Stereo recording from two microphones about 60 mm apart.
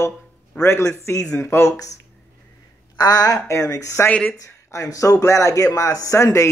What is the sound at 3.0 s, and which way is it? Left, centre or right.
Speech, left.